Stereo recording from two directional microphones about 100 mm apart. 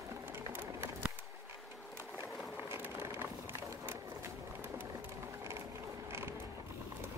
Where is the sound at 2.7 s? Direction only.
25° right (ahead or behind).